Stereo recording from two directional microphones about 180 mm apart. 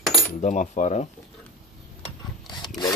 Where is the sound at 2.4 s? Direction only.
25° left (ahead or behind).